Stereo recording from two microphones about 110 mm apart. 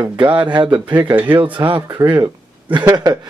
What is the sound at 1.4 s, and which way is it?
Speech, 55° right (ahead or behind).